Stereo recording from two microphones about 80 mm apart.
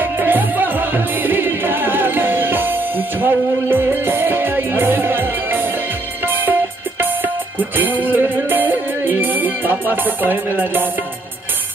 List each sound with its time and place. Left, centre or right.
0.0 s music: right